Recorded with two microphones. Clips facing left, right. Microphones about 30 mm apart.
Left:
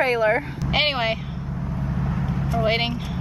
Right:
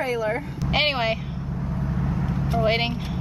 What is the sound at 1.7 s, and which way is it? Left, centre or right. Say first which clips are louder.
Vehicle: even; centre.